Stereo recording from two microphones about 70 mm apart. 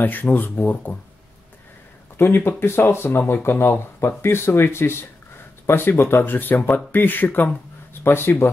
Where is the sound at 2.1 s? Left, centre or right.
Left.